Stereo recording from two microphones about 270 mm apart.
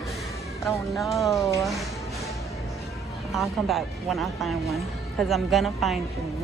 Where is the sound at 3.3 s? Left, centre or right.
Centre.